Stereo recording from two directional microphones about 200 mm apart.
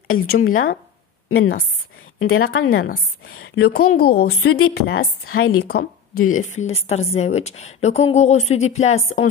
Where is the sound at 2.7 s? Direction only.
45° left (ahead or behind).